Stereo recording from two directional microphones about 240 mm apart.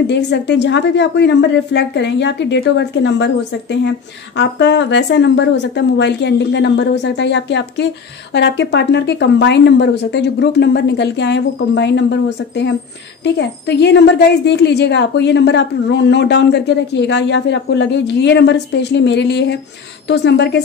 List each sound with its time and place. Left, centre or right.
0.0 s speech: left
4.4 s speech: left